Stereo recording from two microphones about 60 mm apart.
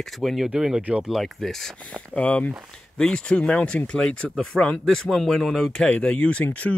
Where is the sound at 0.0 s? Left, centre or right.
Centre.